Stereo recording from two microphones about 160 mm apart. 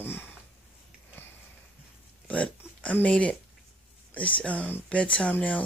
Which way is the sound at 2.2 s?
10° left (ahead or behind).